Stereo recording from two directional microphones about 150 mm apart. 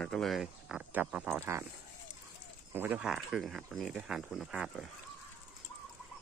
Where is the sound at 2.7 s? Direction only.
10° right (ahead or behind).